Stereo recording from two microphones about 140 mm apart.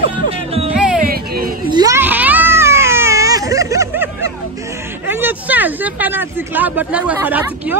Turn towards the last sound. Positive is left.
turn(degrees=-10)  # may be behind; listen again after turning